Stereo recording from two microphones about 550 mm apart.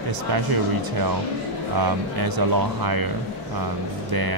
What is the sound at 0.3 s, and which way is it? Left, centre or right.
Speech, right.